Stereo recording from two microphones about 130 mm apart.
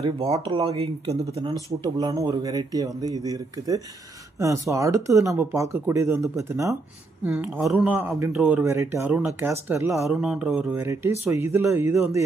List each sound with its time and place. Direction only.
0.0 s speech: 45° right (ahead or behind)
1.4 s a man's voice: 30° right (ahead or behind); by 8.7 s 10° right (ahead or behind)
8.7 s speech: 20° right (ahead or behind)
10.0 s a man's voice: 5° right (ahead or behind)
10.8 s speech: 20° right (ahead or behind)